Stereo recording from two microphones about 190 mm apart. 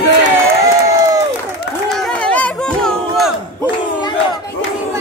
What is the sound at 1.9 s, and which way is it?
Crowd, centre (ahead or behind).